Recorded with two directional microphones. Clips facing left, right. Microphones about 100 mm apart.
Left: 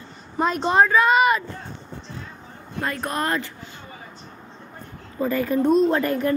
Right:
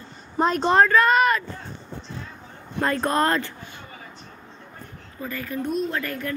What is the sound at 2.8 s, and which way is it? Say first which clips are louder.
Speech: right 4 dB; 30° right (ahead or behind).